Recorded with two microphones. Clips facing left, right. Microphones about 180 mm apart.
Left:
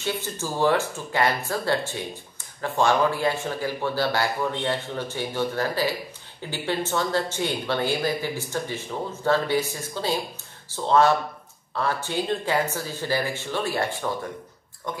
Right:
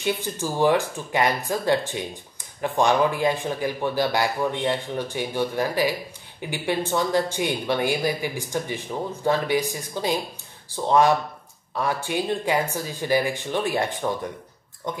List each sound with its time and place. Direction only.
0.0 s speech: 15° right (ahead or behind)